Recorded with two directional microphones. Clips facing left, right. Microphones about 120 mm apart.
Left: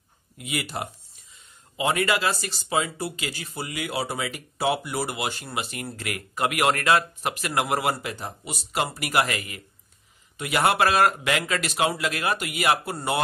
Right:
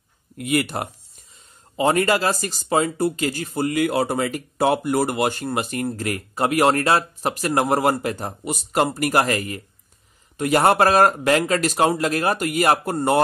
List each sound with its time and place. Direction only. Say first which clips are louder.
0.4 s speech: right 8 dB; 55° right (ahead or behind)
1.8 s speech: right 5 dB; 40° right (ahead or behind)